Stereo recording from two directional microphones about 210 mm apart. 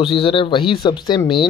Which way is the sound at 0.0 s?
25° left (ahead or behind).